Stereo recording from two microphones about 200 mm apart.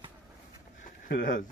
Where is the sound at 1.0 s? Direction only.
45° left (ahead or behind).